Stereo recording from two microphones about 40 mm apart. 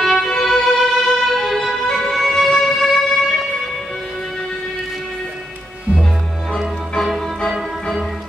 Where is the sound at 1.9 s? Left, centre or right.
Centre.